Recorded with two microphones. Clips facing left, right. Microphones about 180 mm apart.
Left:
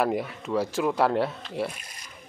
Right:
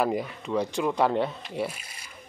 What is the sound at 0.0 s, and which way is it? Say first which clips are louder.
Speech: left 1 dB; centre (ahead or behind).